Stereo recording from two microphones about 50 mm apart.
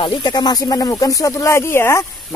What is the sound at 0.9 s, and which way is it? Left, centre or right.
Speech, left.